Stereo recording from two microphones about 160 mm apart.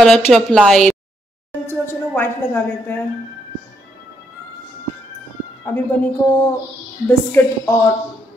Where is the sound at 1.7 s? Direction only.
15° left (ahead or behind).